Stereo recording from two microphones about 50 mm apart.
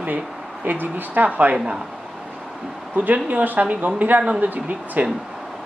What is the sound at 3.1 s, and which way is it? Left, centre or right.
Speech, right.